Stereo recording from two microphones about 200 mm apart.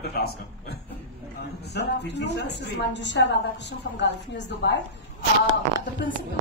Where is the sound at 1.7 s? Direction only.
60° left (ahead or behind).